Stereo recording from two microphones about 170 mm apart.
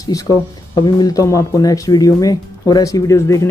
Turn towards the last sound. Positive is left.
turn(degrees=20)  # may be behind; listen again after turning